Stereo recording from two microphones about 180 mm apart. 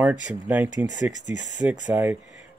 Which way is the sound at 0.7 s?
20° right (ahead or behind).